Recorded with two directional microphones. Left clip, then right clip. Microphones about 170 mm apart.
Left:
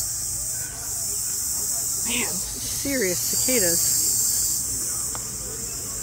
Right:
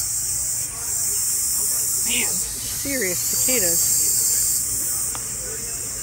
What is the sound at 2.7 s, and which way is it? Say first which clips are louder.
Speech: even; 15° left (ahead or behind).